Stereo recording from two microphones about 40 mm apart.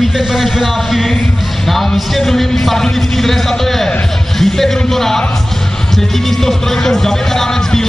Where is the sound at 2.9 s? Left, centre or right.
Centre.